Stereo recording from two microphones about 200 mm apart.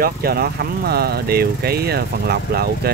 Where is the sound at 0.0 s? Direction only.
50° right (ahead or behind).